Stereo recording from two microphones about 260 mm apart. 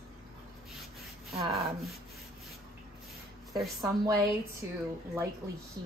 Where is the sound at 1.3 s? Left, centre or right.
Right.